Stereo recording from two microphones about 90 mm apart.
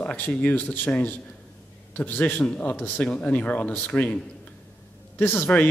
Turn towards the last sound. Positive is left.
turn(degrees=20)  # may be behind; listen again after turning